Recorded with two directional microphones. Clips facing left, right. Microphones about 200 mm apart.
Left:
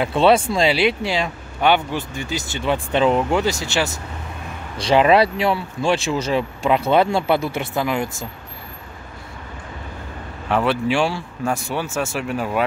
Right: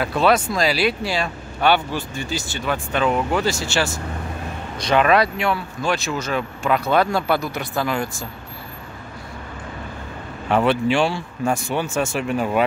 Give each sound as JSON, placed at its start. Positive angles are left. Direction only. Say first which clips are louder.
{"t": 0.0, "sound": "speech", "louder": "left 3 dB", "side_deg": 30}
{"t": 10.5, "sound": "speech", "louder": "right 1 dB", "side_deg": 5}